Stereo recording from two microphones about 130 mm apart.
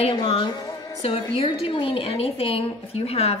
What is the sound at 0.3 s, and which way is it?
A woman's voice, 40° left (ahead or behind).